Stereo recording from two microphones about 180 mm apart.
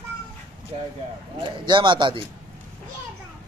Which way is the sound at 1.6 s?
25° right (ahead or behind).